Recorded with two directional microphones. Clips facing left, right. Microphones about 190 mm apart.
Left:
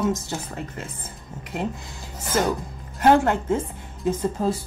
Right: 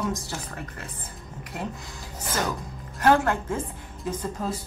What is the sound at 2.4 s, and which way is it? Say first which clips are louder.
Speech: left 7 dB; 25° left (ahead or behind).